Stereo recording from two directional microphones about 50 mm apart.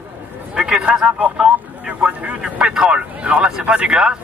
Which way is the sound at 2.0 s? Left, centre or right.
Right.